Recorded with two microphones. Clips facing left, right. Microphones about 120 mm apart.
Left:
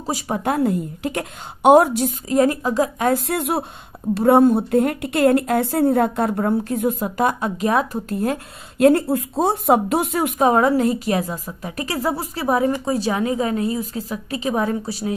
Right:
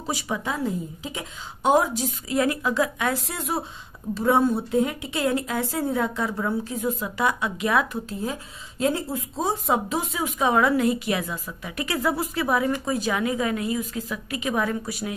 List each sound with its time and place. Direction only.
0.0 s a woman's voice: 40° left (ahead or behind)
0.4 s speech: 60° left (ahead or behind)
2.2 s a woman's voice: 40° left (ahead or behind)
3.2 s speech: 55° left (ahead or behind); by 8.0 s 35° left (ahead or behind)
8.1 s speech: 65° left (ahead or behind)
10.4 s a woman's voice: 40° left (ahead or behind)